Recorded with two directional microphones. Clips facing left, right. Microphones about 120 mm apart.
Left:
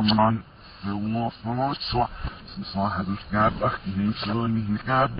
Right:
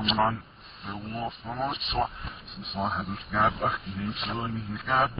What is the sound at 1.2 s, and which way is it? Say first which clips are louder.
Speech: left 1 dB; 30° left (ahead or behind).